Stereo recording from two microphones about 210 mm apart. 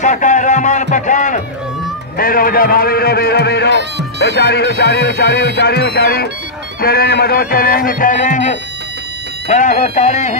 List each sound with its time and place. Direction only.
0.0 s a man's voice: 35° left (ahead or behind)